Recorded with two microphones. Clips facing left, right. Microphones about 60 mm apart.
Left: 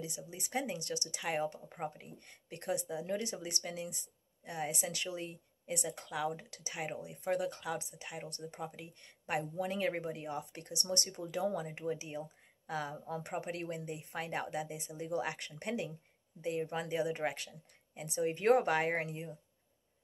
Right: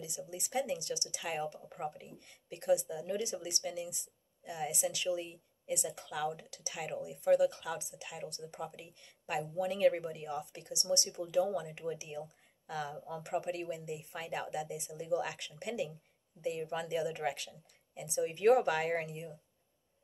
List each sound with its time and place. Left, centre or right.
0.3 s speech: left
1.7 s speech: left
2.1 s speech: left